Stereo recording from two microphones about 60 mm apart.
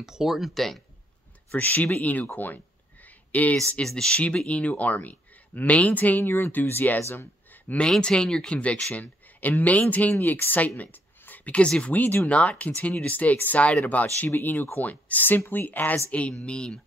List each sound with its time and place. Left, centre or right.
0.0 s speech: centre
1.6 s speech: left
2.3 s a sound: left
3.8 s speech: centre; by 7.0 s left
7.0 s speech: left
7.5 s a sound: left
8.0 s speech: centre
8.9 s speech: left